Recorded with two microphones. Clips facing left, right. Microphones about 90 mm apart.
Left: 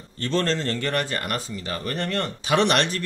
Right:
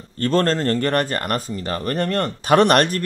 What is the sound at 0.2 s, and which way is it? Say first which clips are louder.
Speech: right 5 dB; 45° right (ahead or behind).